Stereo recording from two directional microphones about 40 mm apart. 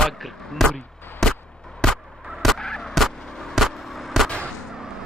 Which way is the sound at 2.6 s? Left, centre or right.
Centre.